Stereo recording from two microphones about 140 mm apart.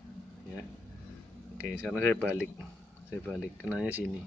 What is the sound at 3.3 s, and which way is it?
Speech, 5° right (ahead or behind).